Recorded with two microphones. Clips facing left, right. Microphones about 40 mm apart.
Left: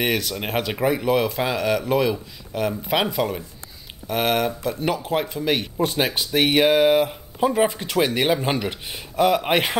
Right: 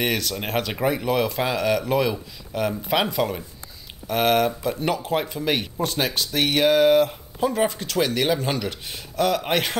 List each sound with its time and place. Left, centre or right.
0.0 s speech: centre
5.8 s speech: centre